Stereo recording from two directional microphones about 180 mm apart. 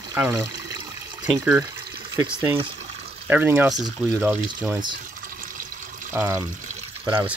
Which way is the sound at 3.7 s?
20° right (ahead or behind).